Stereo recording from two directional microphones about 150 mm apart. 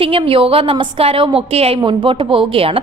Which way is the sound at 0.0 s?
40° right (ahead or behind).